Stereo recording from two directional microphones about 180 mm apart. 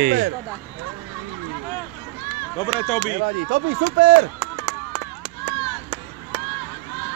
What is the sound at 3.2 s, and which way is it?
Speech, 60° right (ahead or behind).